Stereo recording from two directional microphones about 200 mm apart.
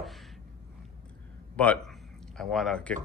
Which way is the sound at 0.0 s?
Centre (ahead or behind).